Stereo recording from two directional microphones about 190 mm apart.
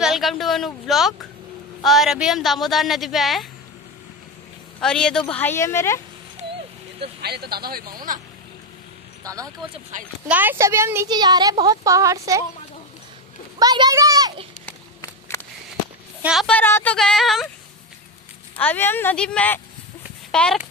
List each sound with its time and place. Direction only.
0.0 s speech: centre (ahead or behind)
4.7 s speech: 5° left (ahead or behind)
6.4 s a sound: 40° right (ahead or behind)
7.2 s a man's voice: 60° right (ahead or behind)
9.2 s a woman's voice: 15° right (ahead or behind)
13.6 s a child's voice: 20° right (ahead or behind)
15.0 s a sound: 15° left (ahead or behind)
16.2 s speech: 5° right (ahead or behind)
18.6 s speech: 10° left (ahead or behind)